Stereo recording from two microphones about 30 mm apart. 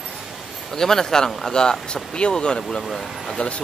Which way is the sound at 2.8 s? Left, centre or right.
Centre.